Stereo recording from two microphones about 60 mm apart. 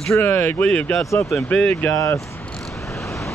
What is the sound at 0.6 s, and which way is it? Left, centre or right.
Speech, left.